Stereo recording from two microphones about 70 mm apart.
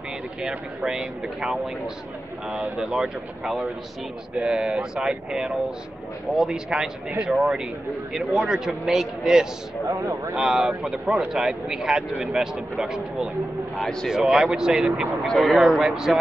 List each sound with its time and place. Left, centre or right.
0.4 s speech: centre
9.8 s speech: right
10.3 s speech: centre
15.2 s speech: centre